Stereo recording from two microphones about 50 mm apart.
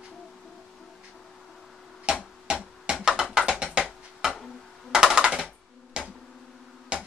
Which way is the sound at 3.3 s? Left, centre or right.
Centre.